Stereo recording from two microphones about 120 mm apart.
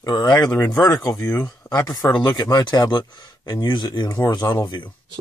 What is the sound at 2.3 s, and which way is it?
Speech, 35° left (ahead or behind).